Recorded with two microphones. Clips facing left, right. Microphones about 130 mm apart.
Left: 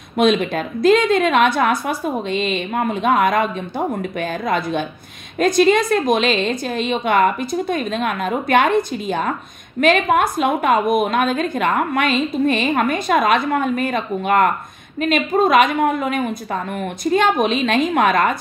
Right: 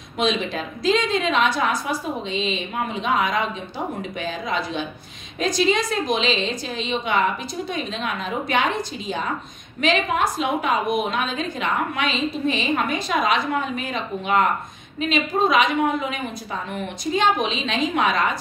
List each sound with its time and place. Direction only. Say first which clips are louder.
0.2 s a woman's voice: left 7 dB; 55° left (ahead or behind)